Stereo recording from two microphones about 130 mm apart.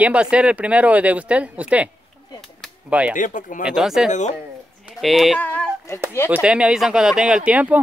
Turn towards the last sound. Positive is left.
turn(degrees=-10)  # may be behind; listen again after turning